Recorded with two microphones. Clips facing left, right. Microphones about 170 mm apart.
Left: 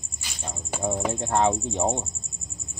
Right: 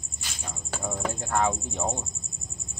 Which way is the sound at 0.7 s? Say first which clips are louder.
Left 5 dB; 25° left (ahead or behind).